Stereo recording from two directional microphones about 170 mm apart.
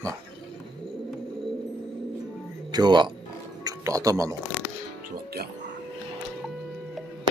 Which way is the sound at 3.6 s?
20° right (ahead or behind).